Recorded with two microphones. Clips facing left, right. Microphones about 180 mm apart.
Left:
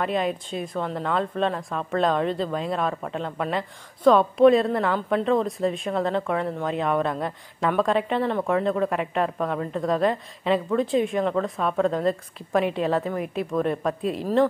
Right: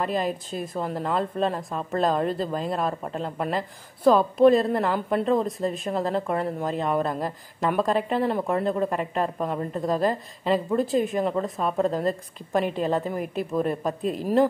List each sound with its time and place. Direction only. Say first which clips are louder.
0.0 s a woman's voice: left 1 dB; centre (ahead or behind)